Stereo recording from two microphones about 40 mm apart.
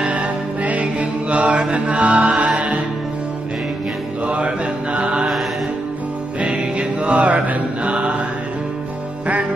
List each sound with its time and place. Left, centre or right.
0.0 s music: right
4.3 s music: right
5.0 s mantra: right
6.4 s mantra: right